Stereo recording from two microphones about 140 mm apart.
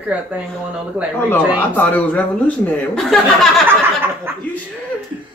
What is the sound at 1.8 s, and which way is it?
A man's voice, 10° left (ahead or behind).